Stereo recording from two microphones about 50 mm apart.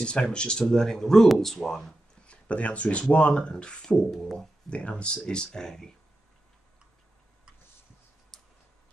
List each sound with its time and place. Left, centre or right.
0.0 s speech: centre
2.2 s speech: left
4.1 s speech: centre
4.6 s speech: left
8.3 s tick: centre